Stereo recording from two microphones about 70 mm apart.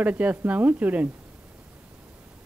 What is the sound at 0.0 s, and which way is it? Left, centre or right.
A woman's voice, right.